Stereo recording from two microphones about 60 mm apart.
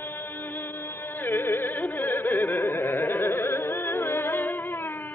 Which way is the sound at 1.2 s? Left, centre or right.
Left.